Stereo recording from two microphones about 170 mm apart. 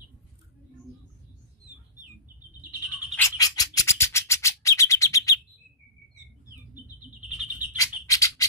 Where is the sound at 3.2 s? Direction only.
20° left (ahead or behind).